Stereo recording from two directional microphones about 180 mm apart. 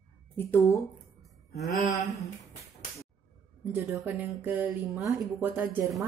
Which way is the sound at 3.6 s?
10° right (ahead or behind).